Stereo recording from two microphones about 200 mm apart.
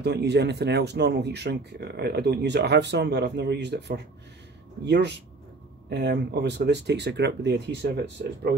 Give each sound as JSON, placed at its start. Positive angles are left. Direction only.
{"t": 0.0, "sound": "speech", "side_deg": -55}